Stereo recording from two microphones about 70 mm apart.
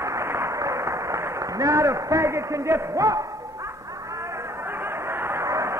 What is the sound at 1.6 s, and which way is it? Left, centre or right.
A man's voice, right.